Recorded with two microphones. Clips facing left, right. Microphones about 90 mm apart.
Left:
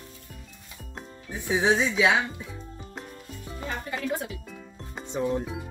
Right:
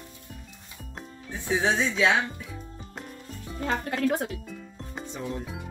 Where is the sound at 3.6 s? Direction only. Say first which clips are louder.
Right 5 dB; 65° right (ahead or behind).